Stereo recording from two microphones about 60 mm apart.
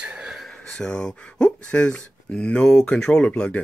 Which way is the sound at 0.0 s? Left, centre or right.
Centre.